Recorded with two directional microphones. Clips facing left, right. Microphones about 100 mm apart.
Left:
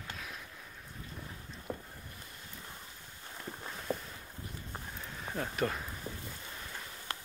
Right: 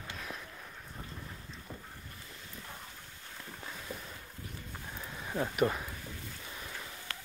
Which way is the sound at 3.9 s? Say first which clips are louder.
Left 9 dB; 55° left (ahead or behind).